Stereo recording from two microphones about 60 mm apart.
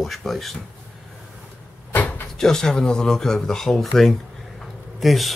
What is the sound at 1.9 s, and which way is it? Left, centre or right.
Vehicle, left.